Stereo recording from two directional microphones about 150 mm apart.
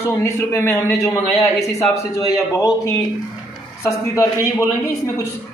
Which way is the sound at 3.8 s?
20° left (ahead or behind).